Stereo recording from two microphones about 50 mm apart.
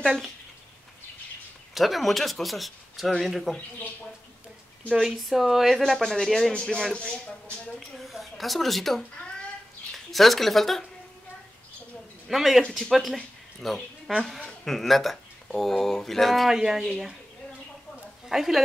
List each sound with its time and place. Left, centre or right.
0.0 s speech: centre
1.7 s speech: centre
4.9 s speech: centre
6.5 s speech: centre
8.0 s speech: centre
10.1 s speech: centre
12.3 s speech: centre
16.5 s speech: centre
18.3 s speech: centre